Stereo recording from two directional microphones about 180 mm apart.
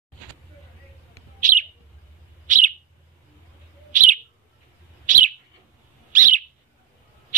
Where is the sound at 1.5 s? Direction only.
45° right (ahead or behind).